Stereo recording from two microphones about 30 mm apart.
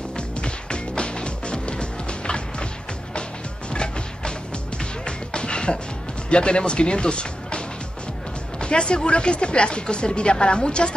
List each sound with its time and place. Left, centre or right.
0.4 s music: left
3.7 s music: left
6.3 s speech: left